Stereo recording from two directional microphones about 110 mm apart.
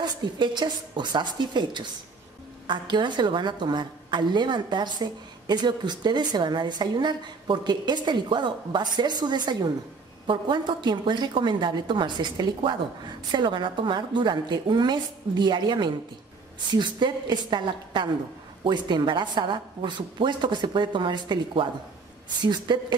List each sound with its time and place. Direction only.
0.0 s a woman's voice: 40° right (ahead or behind)